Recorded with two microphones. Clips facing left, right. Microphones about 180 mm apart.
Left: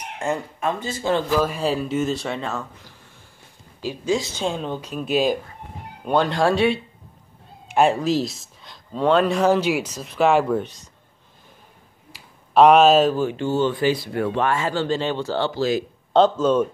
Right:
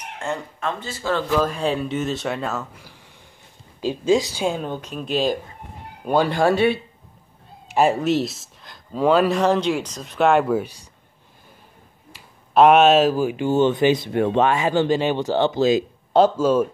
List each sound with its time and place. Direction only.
0.2 s speech: 10° left (ahead or behind)
1.4 s speech: 5° left (ahead or behind)
4.0 s speech: 20° right (ahead or behind)
4.4 s speech: 5° right (ahead or behind)
4.7 s speech: 5° left (ahead or behind)
6.0 s speech: 5° right (ahead or behind)
12.1 s speech: centre (ahead or behind); by 15.8 s 20° right (ahead or behind)
16.1 s speech: 5° right (ahead or behind)